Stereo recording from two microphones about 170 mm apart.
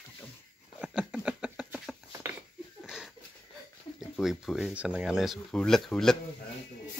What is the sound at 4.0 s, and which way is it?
Speech, centre (ahead or behind).